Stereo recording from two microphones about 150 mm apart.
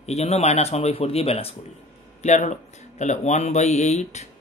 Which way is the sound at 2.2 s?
50° left (ahead or behind).